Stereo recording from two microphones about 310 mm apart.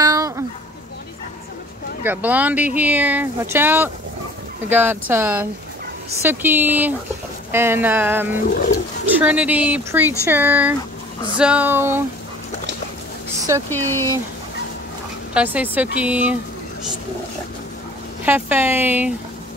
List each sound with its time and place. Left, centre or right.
0.0 s a sound: centre
2.0 s speech: centre
8.5 s speech: left
9.1 s speech: centre
13.7 s speech: centre
15.3 s speech: centre
18.2 s speech: centre